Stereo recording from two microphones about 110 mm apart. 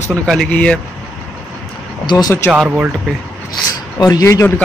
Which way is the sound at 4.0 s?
35° left (ahead or behind).